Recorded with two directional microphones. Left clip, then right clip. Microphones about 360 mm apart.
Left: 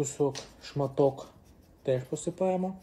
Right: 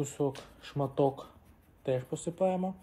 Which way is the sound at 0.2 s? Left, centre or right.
Right.